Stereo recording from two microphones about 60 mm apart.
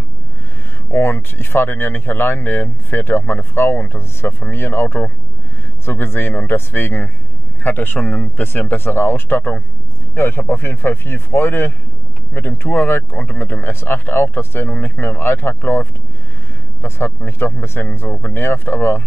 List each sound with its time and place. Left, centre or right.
0.9 s speech: left
8.5 s speech: left